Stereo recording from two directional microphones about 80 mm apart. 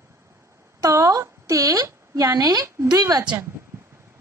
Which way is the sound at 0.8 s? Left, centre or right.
Right.